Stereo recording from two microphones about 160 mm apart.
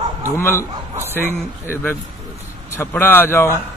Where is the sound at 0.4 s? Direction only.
15° left (ahead or behind).